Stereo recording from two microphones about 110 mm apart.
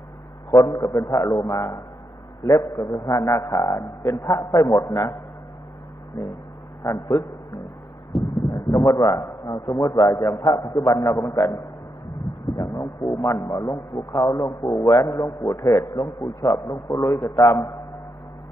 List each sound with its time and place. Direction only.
0.5 s a man's voice: 30° left (ahead or behind)
2.4 s a man's voice: 30° left (ahead or behind)
6.8 s a man's voice: 30° left (ahead or behind)
8.1 s heart murmur: centre (ahead or behind)
8.5 s a man's voice: 30° left (ahead or behind)
12.6 s a man's voice: 25° left (ahead or behind)